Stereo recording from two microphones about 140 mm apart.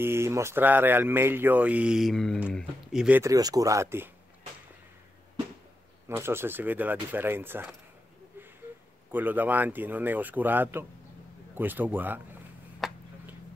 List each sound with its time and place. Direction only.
0.0 s speech: 20° right (ahead or behind)
3.2 s speech: 25° right (ahead or behind)
6.0 s speech: 15° right (ahead or behind)
9.1 s speech: 15° right (ahead or behind)
12.8 s tick-tock: centre (ahead or behind)